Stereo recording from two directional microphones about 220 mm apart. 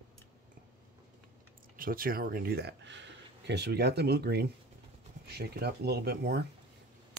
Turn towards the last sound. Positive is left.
turn(degrees=-50)  # may be behind; listen again after turning